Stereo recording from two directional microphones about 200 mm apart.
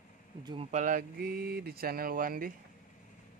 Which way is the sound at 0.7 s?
40° right (ahead or behind).